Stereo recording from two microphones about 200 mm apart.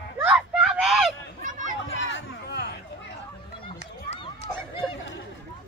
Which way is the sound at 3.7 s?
30° left (ahead or behind).